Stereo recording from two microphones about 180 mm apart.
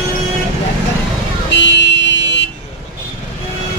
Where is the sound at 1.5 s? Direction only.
75° left (ahead or behind).